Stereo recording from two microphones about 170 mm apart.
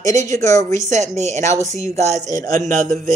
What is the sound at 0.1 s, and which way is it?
Speech, 20° left (ahead or behind).